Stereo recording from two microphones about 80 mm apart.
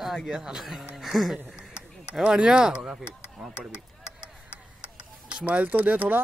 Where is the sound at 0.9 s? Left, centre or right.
Centre.